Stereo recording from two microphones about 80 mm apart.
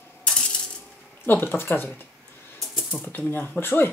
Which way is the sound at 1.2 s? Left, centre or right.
Left.